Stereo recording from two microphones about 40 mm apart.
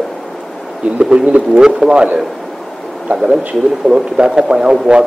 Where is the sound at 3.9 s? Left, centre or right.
Right.